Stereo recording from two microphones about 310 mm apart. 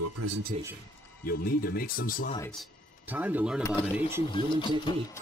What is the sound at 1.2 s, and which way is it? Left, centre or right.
Speech, left.